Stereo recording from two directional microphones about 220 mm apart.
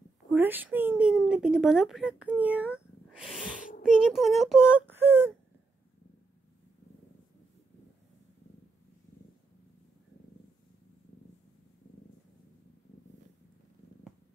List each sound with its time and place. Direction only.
0.3 s speech: 10° right (ahead or behind)